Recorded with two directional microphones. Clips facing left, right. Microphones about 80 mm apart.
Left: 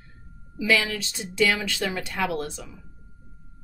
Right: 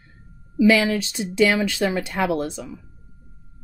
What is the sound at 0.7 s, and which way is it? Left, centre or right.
Speech, right.